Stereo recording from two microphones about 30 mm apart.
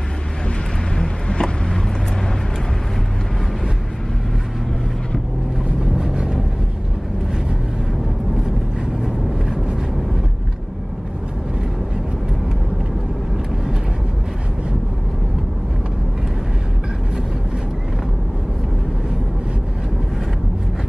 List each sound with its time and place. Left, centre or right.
0.9 s vehicle: left
5.8 s vehicle: centre